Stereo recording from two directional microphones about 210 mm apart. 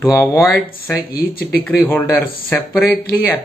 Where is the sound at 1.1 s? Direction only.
45° left (ahead or behind).